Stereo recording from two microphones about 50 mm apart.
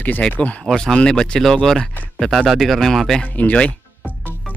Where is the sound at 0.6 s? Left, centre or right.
Centre.